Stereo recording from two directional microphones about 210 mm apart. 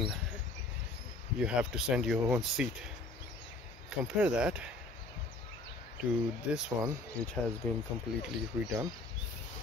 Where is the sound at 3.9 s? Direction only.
5° right (ahead or behind).